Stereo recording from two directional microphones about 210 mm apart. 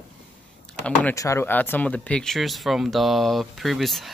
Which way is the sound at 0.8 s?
10° left (ahead or behind).